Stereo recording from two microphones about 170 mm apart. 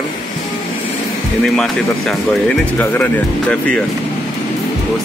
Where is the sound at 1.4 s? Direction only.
Centre (ahead or behind).